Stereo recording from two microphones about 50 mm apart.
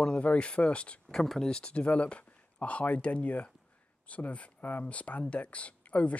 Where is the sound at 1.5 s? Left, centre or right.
Centre.